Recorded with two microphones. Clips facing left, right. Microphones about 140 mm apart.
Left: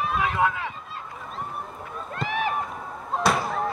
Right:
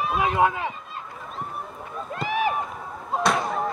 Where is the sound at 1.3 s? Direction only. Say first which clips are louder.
Even; centre (ahead or behind).